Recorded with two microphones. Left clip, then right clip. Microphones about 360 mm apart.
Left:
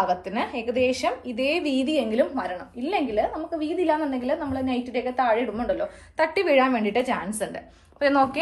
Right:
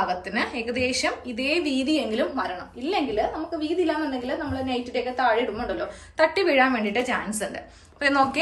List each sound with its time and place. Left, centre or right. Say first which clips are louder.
0.3 s a woman's voice: even; centre